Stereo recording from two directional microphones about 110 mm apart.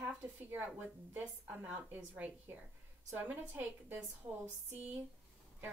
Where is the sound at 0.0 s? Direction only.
15° right (ahead or behind).